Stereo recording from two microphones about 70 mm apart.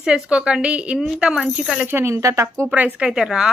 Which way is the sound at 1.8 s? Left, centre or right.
Right.